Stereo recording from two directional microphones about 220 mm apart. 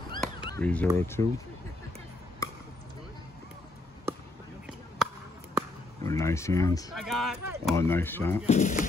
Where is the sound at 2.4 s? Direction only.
15° left (ahead or behind).